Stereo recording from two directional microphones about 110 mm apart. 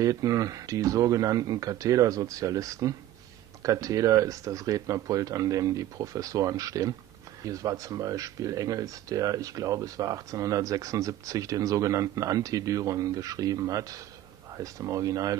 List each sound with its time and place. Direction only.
0.0 s speech: 30° right (ahead or behind)